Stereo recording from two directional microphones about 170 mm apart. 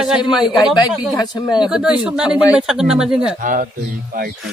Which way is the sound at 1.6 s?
5° right (ahead or behind).